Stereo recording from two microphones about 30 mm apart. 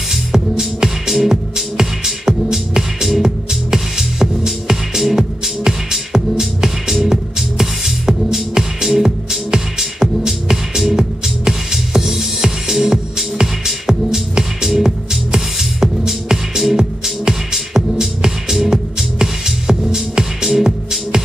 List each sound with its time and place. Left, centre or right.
0.1 s music: centre